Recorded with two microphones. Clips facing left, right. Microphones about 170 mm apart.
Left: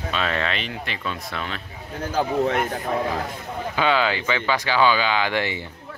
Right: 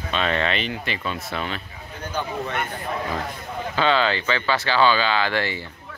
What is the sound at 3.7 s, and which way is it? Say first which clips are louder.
Speech: even; 10° left (ahead or behind).